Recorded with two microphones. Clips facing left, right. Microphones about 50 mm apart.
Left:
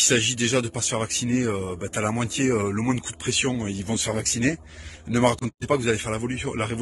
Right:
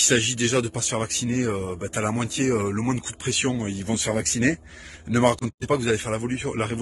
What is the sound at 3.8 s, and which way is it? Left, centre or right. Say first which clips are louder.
Speech: right 1 dB; right.